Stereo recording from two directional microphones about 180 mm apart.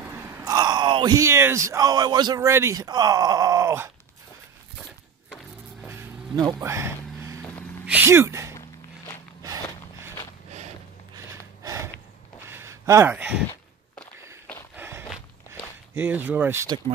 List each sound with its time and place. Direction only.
0.1 s speech: 10° right (ahead or behind)
5.8 s vehicle: 15° right (ahead or behind)
6.4 s a sound: 15° right (ahead or behind)
8.5 s walk: 15° left (ahead or behind)
11.2 s gasp: 15° right (ahead or behind)
12.4 s a sound: 15° right (ahead or behind)
14.8 s walk: 15° right (ahead or behind)
15.9 s speech: 10° right (ahead or behind)